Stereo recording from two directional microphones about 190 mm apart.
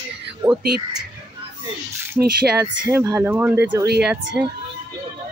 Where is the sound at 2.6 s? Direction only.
20° right (ahead or behind).